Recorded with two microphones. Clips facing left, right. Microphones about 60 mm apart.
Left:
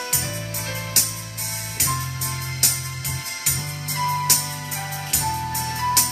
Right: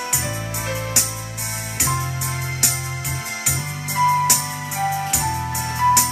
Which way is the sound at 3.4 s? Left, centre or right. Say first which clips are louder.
Right 4 dB; centre.